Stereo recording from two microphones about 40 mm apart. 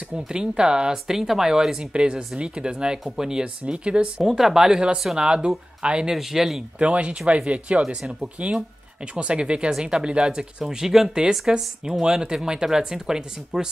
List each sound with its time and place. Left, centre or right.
0.3 s speech: right
1.8 s speech: right
3.7 s speech: right
4.2 s speech: centre
4.6 s speech: right
6.1 s speech: centre
6.8 s speech: right
10.7 s speech: centre